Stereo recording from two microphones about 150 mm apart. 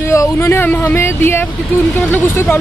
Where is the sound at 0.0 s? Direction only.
20° left (ahead or behind).